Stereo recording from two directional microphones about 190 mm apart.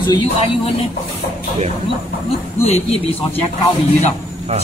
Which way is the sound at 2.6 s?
35° left (ahead or behind).